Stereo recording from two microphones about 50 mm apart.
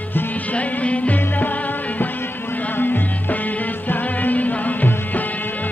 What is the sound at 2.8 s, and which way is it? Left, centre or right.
Music, left.